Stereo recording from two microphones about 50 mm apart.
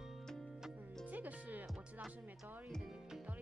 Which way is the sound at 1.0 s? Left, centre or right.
Right.